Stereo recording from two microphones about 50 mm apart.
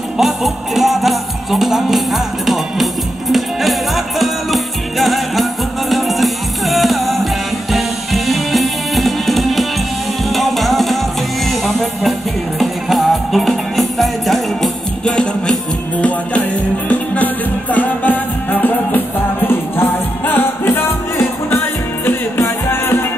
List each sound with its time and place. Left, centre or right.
0.2 s music: centre
15.0 s music: centre
16.9 s music: left
22.0 s music: left